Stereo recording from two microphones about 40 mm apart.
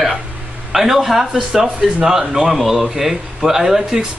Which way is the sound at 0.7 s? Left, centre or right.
Centre.